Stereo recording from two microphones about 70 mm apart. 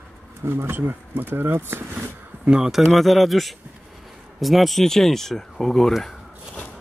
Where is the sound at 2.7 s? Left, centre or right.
Centre.